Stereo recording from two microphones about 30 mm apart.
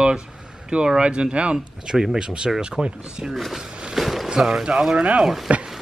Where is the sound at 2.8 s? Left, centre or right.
Right.